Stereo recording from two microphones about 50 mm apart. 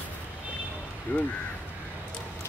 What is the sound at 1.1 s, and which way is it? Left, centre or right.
Speech, left.